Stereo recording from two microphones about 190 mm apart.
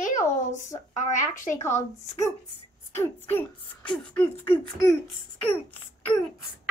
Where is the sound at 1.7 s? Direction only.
15° left (ahead or behind).